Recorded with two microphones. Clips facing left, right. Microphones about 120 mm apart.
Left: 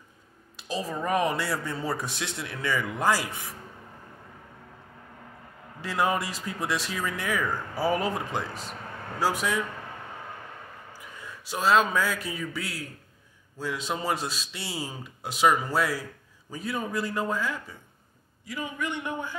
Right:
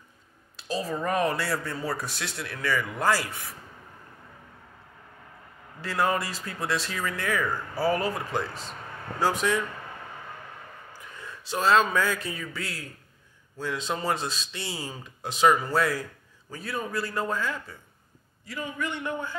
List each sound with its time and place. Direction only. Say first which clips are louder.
0.6 s a man's voice: right 1 dB; 15° left (ahead or behind)
5.8 s a man's voice: even; 15° left (ahead or behind)
11.0 s a man's voice: even; 10° left (ahead or behind)